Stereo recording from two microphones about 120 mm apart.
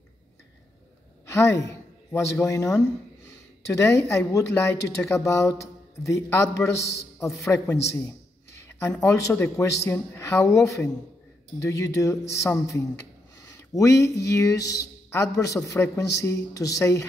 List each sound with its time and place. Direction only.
1.3 s a woman's voice: 25° left (ahead or behind)